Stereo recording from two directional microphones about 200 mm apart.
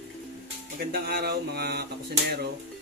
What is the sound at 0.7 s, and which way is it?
Speech, 50° right (ahead or behind).